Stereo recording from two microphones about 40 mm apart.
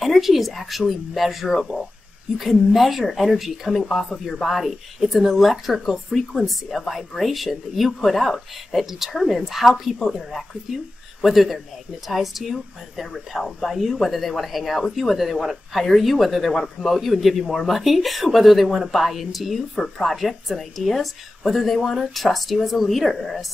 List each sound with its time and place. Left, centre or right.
0.0 s speech: centre